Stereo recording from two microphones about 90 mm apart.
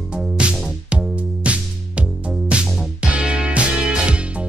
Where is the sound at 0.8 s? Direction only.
15° right (ahead or behind).